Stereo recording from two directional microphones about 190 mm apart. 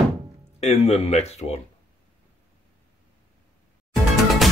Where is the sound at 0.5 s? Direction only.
35° left (ahead or behind).